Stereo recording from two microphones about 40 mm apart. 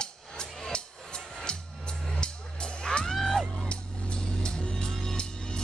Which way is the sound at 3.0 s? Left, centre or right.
Centre.